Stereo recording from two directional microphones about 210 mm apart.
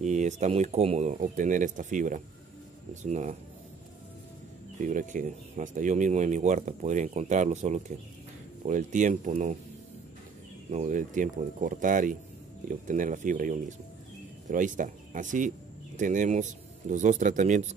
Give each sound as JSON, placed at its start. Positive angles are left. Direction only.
{"t": 0.0, "sound": "speech", "side_deg": -35}
{"t": 4.8, "sound": "speech", "side_deg": -35}
{"t": 10.7, "sound": "speech", "side_deg": -35}